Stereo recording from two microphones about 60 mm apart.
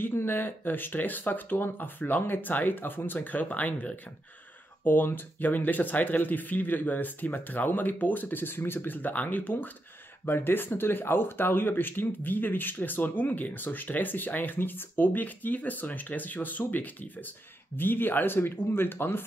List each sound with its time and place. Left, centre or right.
0.0 s speech: left